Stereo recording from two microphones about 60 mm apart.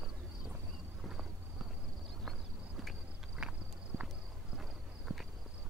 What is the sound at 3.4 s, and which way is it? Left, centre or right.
Walk, centre.